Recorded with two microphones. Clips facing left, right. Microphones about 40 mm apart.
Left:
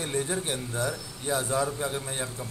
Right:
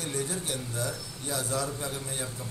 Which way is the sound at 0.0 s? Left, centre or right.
Left.